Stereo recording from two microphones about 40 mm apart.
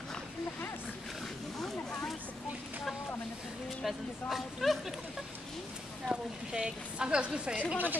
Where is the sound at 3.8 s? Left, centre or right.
Centre.